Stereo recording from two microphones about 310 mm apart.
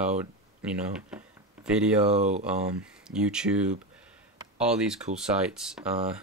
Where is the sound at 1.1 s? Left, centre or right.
Centre.